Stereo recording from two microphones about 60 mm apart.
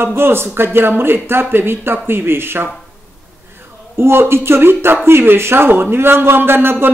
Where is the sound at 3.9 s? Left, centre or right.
Right.